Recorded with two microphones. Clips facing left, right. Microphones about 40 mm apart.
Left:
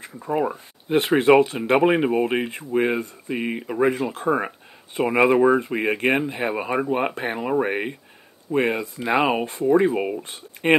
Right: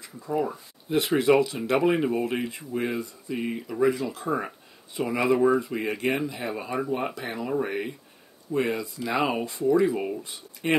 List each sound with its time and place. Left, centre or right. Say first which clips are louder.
0.0 s speech: left 4 dB; left
10.2 s speech: left 7 dB; left